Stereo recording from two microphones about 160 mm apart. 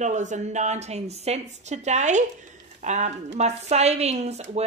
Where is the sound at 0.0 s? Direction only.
50° right (ahead or behind).